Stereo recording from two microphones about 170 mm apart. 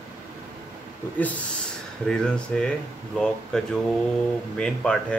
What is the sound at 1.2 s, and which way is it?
Speech, 10° left (ahead or behind).